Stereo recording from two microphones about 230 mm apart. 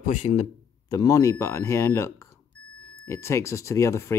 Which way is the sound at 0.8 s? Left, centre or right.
Centre.